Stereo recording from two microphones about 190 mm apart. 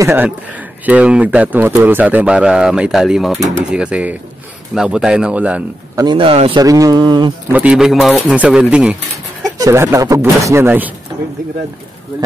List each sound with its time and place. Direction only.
0.0 s speech: 10° right (ahead or behind)
5.9 s speech: 25° right (ahead or behind)
6.6 s speech: 20° right (ahead or behind)
7.5 s speech: 5° right (ahead or behind)
9.6 s speech: 15° right (ahead or behind)